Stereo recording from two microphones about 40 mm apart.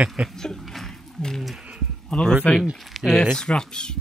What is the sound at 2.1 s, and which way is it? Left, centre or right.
Speech, centre.